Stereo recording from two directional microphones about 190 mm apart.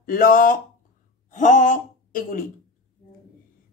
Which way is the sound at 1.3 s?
40° left (ahead or behind).